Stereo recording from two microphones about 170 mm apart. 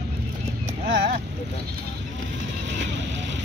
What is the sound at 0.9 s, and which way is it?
Speech, 70° right (ahead or behind).